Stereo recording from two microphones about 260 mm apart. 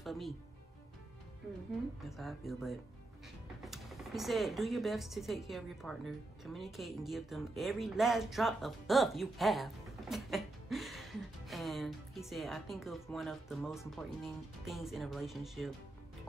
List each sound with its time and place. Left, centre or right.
0.0 s music: centre
2.0 s speech: centre